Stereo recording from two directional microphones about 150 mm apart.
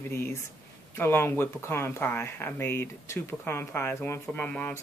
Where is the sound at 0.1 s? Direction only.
15° left (ahead or behind).